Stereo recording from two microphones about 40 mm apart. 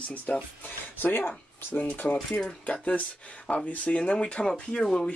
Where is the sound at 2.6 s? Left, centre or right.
Left.